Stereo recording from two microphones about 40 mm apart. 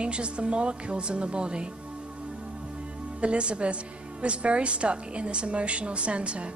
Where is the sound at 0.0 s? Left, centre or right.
Right.